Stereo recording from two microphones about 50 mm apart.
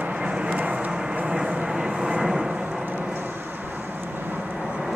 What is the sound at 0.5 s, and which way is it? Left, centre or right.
Vehicle, right.